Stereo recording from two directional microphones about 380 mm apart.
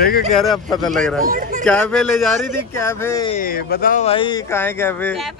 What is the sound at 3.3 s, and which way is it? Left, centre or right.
Speech, left.